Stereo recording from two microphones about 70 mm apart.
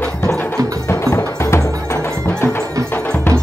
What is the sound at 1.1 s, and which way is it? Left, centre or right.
Music, left.